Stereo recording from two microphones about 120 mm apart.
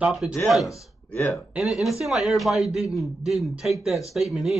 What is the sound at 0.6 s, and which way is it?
Speech, 20° left (ahead or behind).